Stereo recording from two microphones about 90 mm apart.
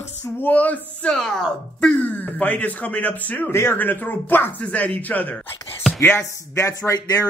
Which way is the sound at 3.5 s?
25° left (ahead or behind).